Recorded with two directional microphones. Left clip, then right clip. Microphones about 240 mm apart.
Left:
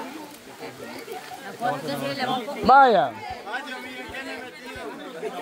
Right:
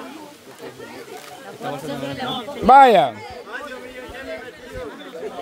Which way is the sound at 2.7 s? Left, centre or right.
Right.